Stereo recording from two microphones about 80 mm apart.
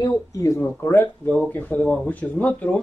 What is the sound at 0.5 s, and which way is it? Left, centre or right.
Speech, left.